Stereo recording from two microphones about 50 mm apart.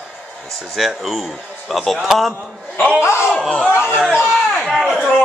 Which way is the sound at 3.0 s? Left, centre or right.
Left.